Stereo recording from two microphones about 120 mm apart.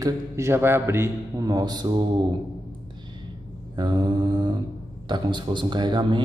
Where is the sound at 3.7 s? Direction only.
35° right (ahead or behind).